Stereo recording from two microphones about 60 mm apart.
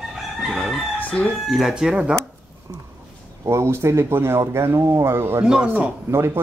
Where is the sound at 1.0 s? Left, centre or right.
Left.